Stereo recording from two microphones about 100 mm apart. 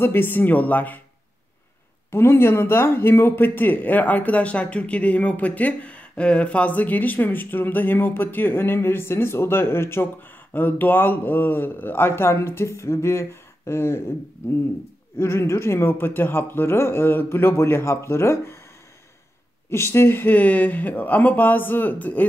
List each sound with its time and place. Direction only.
0.0 s speech: 20° left (ahead or behind)
2.0 s a man's voice: 25° left (ahead or behind)
15.1 s a man's voice: 25° left (ahead or behind)
19.7 s speech: 25° left (ahead or behind)